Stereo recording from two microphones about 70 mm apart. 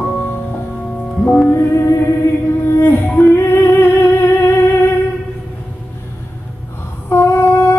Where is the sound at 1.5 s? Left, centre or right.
Left.